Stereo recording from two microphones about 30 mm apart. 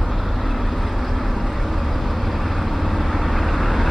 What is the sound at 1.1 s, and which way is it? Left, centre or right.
Vehicle, centre.